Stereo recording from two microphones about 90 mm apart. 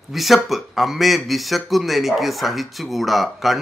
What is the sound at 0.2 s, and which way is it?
Speech, centre (ahead or behind).